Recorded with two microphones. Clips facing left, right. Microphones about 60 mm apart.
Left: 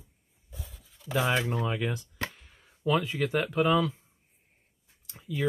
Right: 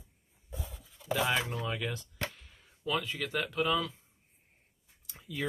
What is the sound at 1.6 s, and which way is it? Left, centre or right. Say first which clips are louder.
Speech: left 5 dB; centre.